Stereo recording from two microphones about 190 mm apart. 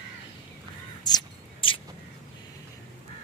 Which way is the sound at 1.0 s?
25° left (ahead or behind).